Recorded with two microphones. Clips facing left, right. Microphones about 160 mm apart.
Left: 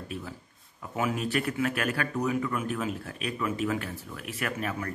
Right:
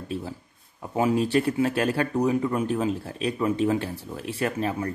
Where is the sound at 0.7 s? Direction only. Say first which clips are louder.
Right 7 dB; 30° right (ahead or behind).